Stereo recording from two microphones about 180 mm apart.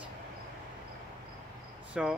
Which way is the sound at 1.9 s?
5° right (ahead or behind).